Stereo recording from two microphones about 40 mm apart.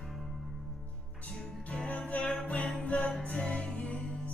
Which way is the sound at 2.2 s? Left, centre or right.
Left.